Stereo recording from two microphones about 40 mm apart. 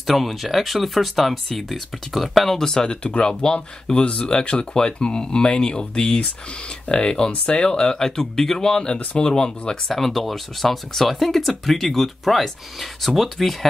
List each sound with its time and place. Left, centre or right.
0.0 s speech: centre
3.0 s speech: left
8.0 s speech: centre
9.8 s speech: centre